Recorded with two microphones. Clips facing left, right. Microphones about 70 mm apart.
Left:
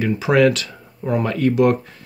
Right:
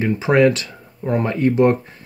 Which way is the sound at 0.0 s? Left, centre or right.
Right.